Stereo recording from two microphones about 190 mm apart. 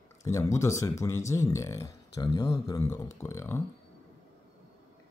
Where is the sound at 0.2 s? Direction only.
15° left (ahead or behind).